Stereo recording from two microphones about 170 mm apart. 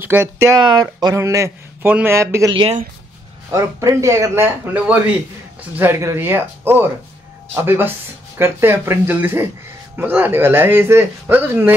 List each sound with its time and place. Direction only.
0.0 s speech: 15° right (ahead or behind)
0.6 s speech: 25° right (ahead or behind)
2.5 s speech: 30° right (ahead or behind)
3.5 s speech: 20° right (ahead or behind)